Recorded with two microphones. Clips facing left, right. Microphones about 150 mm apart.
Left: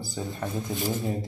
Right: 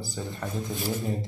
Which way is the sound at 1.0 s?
Centre (ahead or behind).